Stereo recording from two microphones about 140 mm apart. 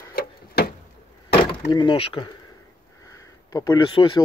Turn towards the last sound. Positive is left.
turn(degrees=35)  # may be behind; listen again after turning